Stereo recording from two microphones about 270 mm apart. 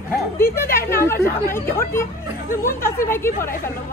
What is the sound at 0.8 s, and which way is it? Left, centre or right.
Speech, centre.